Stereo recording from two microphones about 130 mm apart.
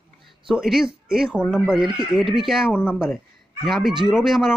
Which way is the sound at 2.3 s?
5° right (ahead or behind).